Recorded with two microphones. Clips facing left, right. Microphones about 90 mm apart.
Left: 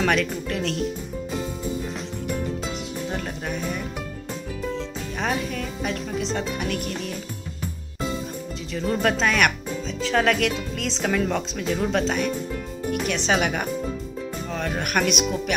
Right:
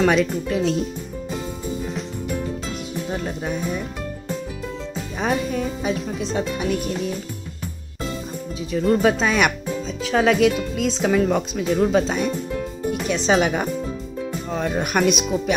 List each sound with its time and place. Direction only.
0.0 s speech: 10° right (ahead or behind)
1.3 s music: centre (ahead or behind)
3.1 s speech: 5° right (ahead or behind)
5.2 s speech: 10° right (ahead or behind)
8.7 s speech: 5° right (ahead or behind)
13.4 s speech: 15° right (ahead or behind)